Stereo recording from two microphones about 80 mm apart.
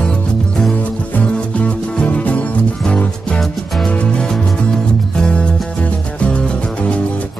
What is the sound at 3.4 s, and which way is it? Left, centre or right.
Music, centre.